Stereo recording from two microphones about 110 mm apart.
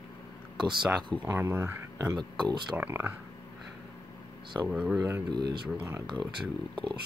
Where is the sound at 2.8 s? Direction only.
20° right (ahead or behind).